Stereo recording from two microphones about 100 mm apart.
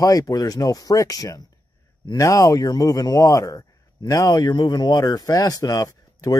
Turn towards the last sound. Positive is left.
turn(degrees=35)  # may be behind; listen again after turning